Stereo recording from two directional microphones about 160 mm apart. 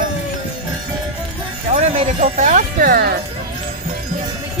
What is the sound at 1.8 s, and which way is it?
Speech, 45° right (ahead or behind).